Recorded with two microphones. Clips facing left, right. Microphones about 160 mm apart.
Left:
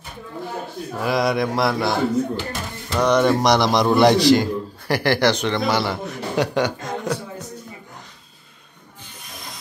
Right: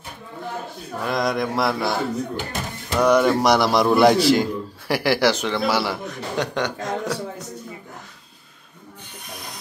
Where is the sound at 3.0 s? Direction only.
5° right (ahead or behind).